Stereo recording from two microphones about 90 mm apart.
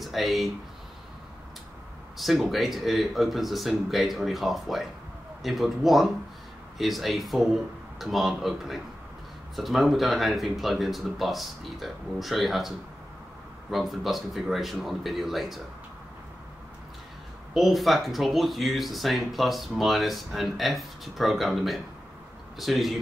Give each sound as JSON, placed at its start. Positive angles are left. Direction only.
{"t": 0.0, "sound": "speech", "side_deg": 0}
{"t": 2.1, "sound": "speech", "side_deg": 0}
{"t": 17.6, "sound": "speech", "side_deg": 0}